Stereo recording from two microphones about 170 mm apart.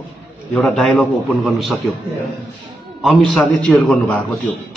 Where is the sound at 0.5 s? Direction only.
5° left (ahead or behind).